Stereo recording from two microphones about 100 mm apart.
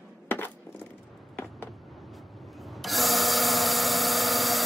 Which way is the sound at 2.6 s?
Centre (ahead or behind).